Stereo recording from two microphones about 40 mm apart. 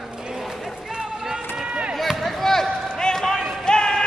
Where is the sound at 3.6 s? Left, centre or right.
Centre.